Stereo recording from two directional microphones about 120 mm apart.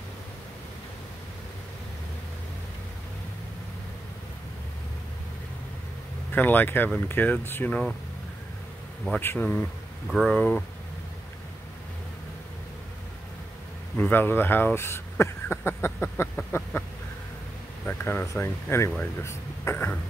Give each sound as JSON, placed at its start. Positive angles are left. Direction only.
{"t": 6.3, "sound": "speech", "side_deg": 15}
{"t": 9.2, "sound": "speech", "side_deg": 20}
{"t": 10.0, "sound": "speech", "side_deg": 5}
{"t": 13.9, "sound": "speech", "side_deg": 15}
{"t": 17.8, "sound": "speech", "side_deg": 20}